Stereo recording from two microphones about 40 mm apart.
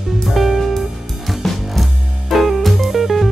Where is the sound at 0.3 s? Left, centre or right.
Centre.